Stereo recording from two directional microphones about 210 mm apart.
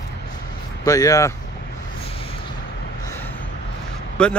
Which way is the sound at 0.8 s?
15° left (ahead or behind).